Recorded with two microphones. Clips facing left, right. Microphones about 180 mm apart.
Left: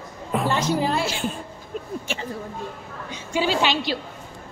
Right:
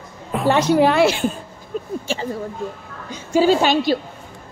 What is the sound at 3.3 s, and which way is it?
Speech, 45° right (ahead or behind).